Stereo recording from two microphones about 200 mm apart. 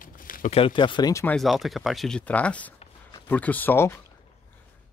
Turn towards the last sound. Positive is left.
turn(degrees=10)  # may be behind; listen again after turning